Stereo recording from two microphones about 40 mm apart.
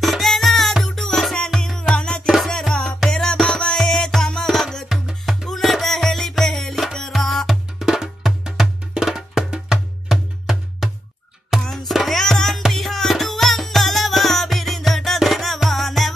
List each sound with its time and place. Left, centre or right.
0.0 s music: centre
1.8 s music: left
2.2 s music: centre
2.7 s music: left
4.8 s music: centre
7.8 s music: centre
11.7 s music: centre